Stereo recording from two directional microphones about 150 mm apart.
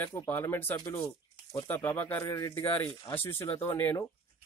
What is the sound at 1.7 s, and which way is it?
Speech, 10° left (ahead or behind).